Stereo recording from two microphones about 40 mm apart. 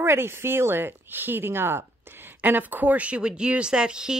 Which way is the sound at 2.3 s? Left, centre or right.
Right.